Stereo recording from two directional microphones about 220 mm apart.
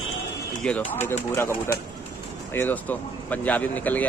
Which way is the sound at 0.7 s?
5° left (ahead or behind).